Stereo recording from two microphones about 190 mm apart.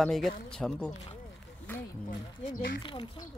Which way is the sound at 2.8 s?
25° left (ahead or behind).